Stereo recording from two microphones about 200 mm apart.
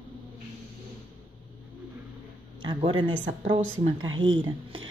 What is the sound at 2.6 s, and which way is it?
Speech, 25° right (ahead or behind).